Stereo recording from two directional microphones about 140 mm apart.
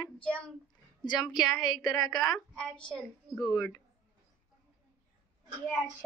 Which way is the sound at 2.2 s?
5° left (ahead or behind).